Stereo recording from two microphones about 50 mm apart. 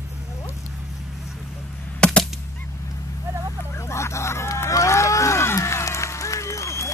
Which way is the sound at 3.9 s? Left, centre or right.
Left.